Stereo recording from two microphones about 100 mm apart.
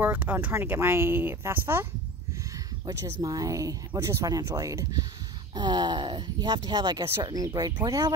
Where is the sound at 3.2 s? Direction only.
35° right (ahead or behind).